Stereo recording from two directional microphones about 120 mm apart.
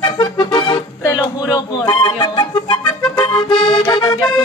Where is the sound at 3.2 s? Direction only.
45° left (ahead or behind).